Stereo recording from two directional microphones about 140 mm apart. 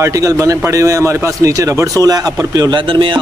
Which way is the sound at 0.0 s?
20° right (ahead or behind).